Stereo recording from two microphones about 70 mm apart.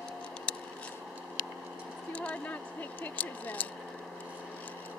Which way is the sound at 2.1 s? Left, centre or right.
Centre.